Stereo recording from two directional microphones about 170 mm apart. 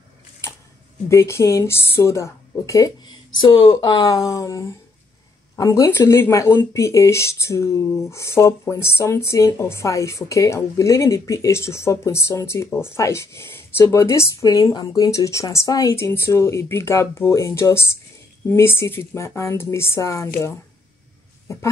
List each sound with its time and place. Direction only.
1.0 s speech: 15° left (ahead or behind)
4.3 s a sound: 20° left (ahead or behind)
5.6 s speech: 20° left (ahead or behind)